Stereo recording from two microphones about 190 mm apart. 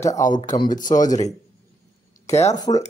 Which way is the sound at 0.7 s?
45° left (ahead or behind).